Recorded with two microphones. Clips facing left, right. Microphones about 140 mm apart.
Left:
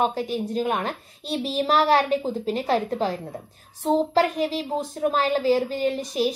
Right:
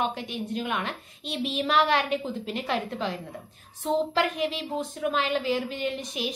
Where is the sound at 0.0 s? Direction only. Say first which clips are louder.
Left 6 dB; 40° left (ahead or behind).